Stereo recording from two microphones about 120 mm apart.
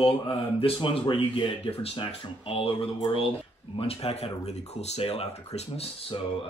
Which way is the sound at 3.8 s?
50° left (ahead or behind).